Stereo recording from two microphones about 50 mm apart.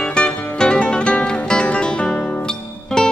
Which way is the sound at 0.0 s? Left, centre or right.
Centre.